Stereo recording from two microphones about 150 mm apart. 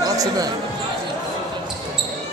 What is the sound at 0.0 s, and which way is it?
Basketball bounce, 25° right (ahead or behind).